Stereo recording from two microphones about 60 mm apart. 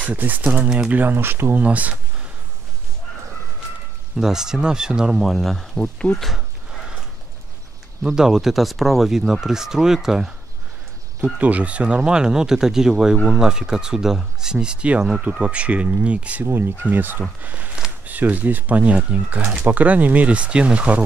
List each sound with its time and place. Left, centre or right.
0.0 s speech: right
1.0 s speech: right
1.6 s speech: right
4.2 s speech: centre
5.2 s speech: centre
5.8 s speech: centre
8.0 s speech: centre
11.3 s speech: right
16.4 s speech: right; by 21.0 s centre